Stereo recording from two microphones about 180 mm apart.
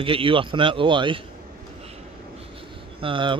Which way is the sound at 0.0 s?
30° right (ahead or behind).